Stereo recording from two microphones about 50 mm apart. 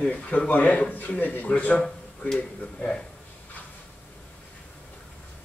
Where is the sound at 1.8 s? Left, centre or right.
Centre.